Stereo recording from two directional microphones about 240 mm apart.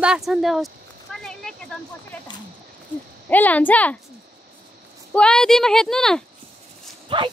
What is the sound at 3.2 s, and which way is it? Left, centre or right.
Speech, centre.